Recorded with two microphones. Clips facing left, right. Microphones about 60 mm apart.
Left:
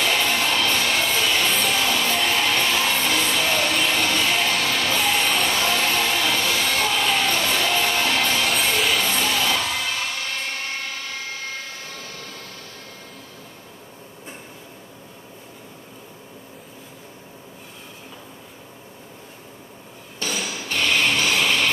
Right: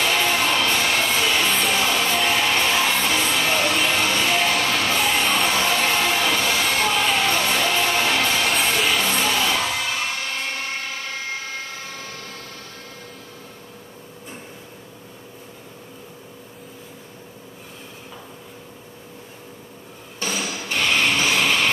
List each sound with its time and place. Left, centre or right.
0.0 s music: centre
1.5 s music: centre
1.8 s music: centre
4.0 s music: centre
5.6 s a sound: centre
7.2 s music: centre
20.2 s a sound: centre
20.6 s music: centre